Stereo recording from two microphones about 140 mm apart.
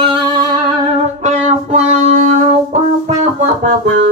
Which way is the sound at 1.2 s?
55° right (ahead or behind).